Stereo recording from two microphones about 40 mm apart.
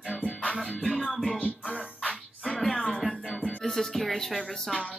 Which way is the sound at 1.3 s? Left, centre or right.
Left.